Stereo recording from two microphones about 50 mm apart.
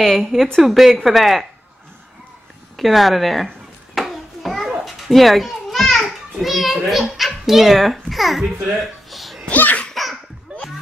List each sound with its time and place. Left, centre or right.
0.0 s a child's voice: centre
2.8 s a child's voice: centre
3.9 s hands: centre
4.8 s a sound: centre
6.3 s a child's voice: centre
8.7 s a sound: centre
9.5 s laughter: left